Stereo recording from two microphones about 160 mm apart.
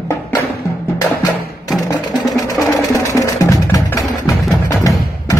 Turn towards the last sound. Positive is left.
turn(degrees=20)  # may be behind; listen again after turning